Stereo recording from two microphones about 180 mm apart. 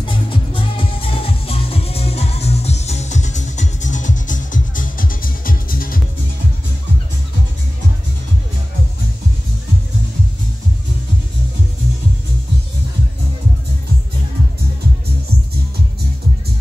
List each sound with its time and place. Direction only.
0.0 s music: 30° left (ahead or behind); by 5.9 s 50° left (ahead or behind)